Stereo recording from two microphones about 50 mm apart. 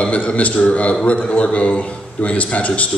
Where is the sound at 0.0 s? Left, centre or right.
Left.